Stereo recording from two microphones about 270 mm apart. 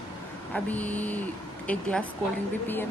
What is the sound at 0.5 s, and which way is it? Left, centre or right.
A woman's voice, centre.